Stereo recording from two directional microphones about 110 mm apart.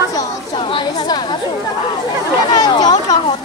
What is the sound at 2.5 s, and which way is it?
Speech, 40° left (ahead or behind).